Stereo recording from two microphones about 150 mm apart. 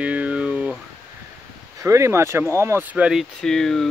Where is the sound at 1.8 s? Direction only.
20° right (ahead or behind); by 3.8 s 5° left (ahead or behind).